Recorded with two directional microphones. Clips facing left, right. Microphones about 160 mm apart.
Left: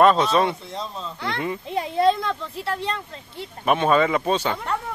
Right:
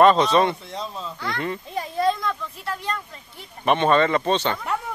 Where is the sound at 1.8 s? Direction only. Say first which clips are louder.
Left 3 dB; 25° left (ahead or behind).